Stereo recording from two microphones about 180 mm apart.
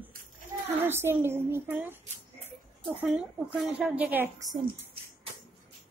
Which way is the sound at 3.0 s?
5° right (ahead or behind).